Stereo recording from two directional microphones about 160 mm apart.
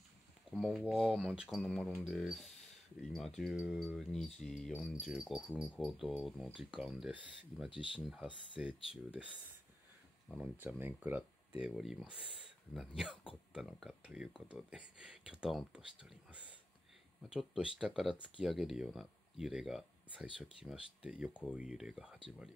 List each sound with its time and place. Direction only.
0.5 s speech: centre (ahead or behind)
7.7 s speech: 30° left (ahead or behind)
8.5 s speech: 5° right (ahead or behind)
12.2 s speech: 35° left (ahead or behind)
12.7 s speech: 5° right (ahead or behind)